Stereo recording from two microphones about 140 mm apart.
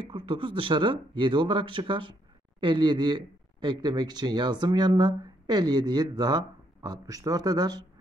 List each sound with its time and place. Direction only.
0.1 s speech: 40° right (ahead or behind)